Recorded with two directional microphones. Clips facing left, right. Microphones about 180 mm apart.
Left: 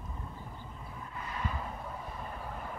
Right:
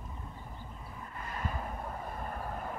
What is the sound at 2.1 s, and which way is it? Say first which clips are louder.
Vehicle: right 2 dB; 50° right (ahead or behind).